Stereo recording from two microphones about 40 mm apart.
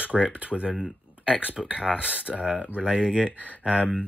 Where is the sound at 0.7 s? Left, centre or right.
Centre.